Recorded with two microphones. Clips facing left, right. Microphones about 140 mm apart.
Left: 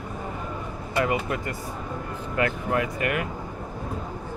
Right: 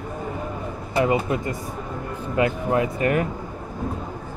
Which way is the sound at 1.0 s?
25° right (ahead or behind).